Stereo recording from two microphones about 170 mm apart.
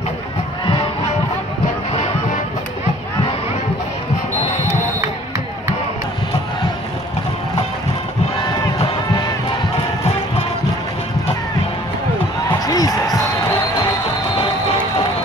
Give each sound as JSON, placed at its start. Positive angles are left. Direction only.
{"t": 12.4, "sound": "basketball bounce", "side_deg": 20}